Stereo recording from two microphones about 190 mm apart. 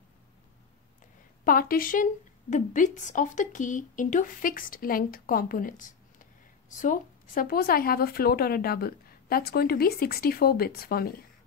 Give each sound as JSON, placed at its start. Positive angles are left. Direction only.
{"t": 1.4, "sound": "a woman's voice", "side_deg": 50}